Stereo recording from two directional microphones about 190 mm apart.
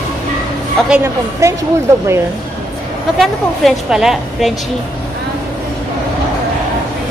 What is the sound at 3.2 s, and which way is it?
A woman's voice, centre (ahead or behind).